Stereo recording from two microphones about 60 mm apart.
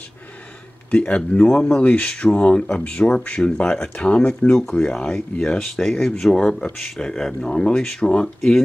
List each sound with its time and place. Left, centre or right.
0.9 s speech: left
3.0 s speech: centre
3.3 s speech: centre